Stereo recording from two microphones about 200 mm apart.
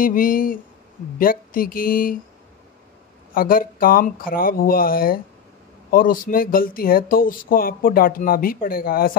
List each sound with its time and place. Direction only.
0.0 s speech: 45° left (ahead or behind)
3.3 s speech: 45° left (ahead or behind)